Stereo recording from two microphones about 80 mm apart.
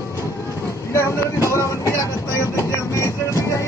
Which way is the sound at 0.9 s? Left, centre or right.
Left.